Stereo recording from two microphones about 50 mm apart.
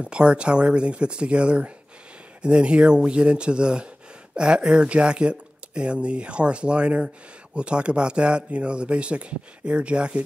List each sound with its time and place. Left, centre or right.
0.0 s speech: right